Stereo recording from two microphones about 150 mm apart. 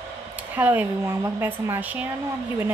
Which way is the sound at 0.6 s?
10° right (ahead or behind).